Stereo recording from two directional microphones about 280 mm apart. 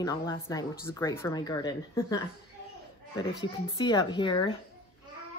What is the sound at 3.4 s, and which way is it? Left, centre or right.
Speech, centre.